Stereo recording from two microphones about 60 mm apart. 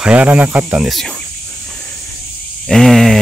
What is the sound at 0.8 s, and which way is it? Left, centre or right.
Speech, centre.